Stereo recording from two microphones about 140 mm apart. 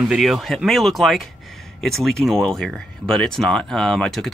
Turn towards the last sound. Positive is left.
turn(degrees=5)  # may be behind; listen again after turning